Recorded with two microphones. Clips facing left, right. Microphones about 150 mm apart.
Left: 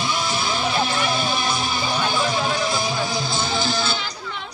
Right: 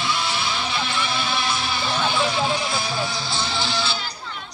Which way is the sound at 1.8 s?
10° left (ahead or behind).